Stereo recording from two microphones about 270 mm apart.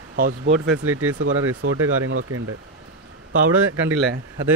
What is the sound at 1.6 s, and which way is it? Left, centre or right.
Speech, right.